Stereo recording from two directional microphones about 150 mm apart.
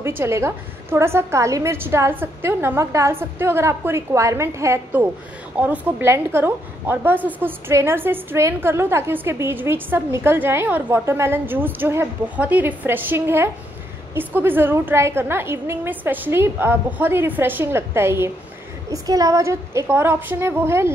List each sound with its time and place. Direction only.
0.2 s a woman's voice: 20° right (ahead or behind)